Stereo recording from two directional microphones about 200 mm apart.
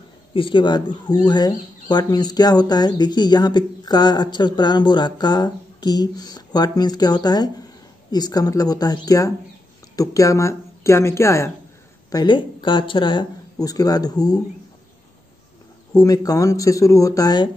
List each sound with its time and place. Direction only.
0.3 s speech: 25° left (ahead or behind)
16.0 s speech: 15° left (ahead or behind)